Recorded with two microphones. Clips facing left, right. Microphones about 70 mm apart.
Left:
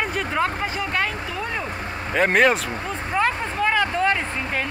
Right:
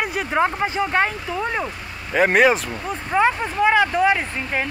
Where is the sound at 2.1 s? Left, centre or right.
Centre.